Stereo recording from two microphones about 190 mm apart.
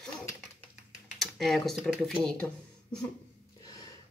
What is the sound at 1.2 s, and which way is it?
Speech, centre (ahead or behind).